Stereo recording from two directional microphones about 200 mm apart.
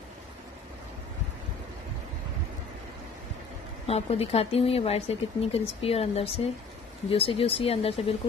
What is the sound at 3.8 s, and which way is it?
Speech, 30° left (ahead or behind).